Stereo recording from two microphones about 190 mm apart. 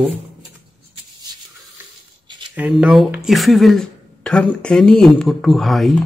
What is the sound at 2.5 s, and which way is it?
Speech, 5° right (ahead or behind).